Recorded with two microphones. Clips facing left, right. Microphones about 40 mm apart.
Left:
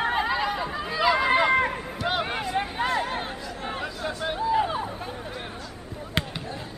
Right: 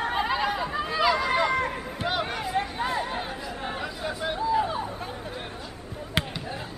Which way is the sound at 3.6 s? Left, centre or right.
Centre.